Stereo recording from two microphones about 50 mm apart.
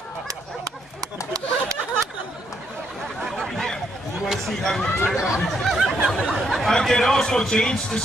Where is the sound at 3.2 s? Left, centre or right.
Centre.